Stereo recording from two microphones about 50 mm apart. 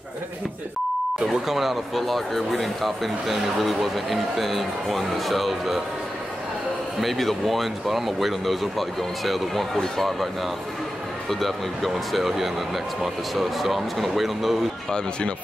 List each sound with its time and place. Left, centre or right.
1.2 s speech: centre
7.0 s speech: centre
14.9 s speech: centre